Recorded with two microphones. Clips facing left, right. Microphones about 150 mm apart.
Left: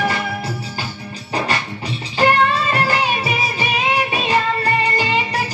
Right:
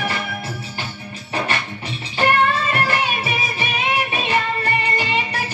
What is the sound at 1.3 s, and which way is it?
Music, 35° left (ahead or behind).